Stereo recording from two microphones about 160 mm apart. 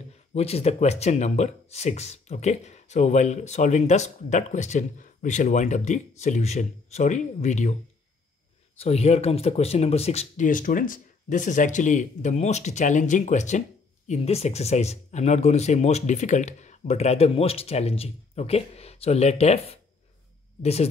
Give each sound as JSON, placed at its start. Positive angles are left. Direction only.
{"t": 0.3, "sound": "speech", "side_deg": 40}
{"t": 8.7, "sound": "speech", "side_deg": 40}
{"t": 20.6, "sound": "speech", "side_deg": 40}